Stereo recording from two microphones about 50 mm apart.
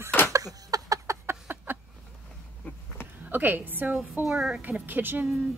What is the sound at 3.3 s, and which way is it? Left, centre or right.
Speech, right.